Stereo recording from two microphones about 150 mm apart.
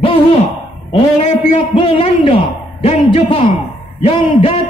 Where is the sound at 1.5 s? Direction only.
35° left (ahead or behind).